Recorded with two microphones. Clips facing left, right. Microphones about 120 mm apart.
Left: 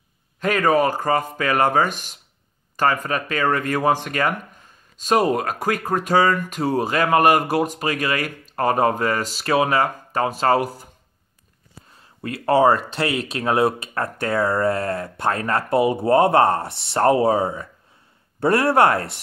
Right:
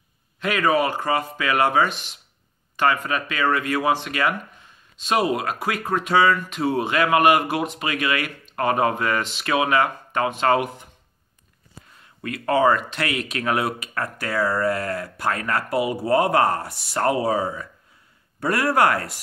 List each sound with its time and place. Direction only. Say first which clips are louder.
0.4 s speech: left 2 dB; 45° left (ahead or behind)
12.0 s speech: left 1 dB; 30° left (ahead or behind)